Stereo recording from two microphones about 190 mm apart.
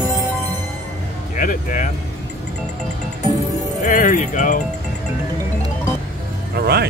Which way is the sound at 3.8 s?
45° left (ahead or behind).